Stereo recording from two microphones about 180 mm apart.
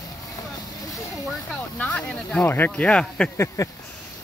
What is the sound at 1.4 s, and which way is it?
Speech, 5° left (ahead or behind).